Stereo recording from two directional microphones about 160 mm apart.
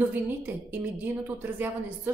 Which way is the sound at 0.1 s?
10° right (ahead or behind).